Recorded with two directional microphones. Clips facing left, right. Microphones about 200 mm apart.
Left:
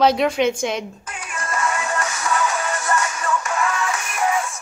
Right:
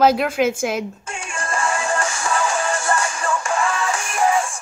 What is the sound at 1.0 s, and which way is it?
Music, 30° right (ahead or behind).